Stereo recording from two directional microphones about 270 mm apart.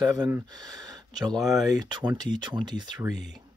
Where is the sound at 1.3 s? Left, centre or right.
Centre.